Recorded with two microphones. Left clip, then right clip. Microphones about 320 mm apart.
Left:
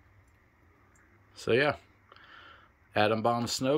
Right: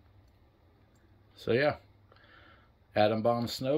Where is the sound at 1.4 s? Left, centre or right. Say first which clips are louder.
Left 1 dB; centre.